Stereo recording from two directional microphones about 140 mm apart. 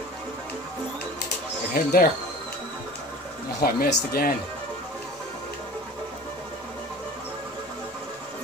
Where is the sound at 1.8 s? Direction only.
90° left.